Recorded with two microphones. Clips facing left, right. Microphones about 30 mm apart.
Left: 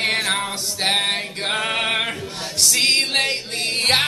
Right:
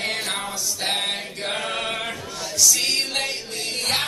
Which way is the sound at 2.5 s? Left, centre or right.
Left.